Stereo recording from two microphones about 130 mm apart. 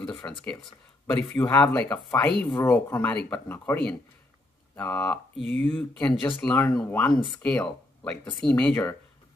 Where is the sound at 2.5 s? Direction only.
15° left (ahead or behind).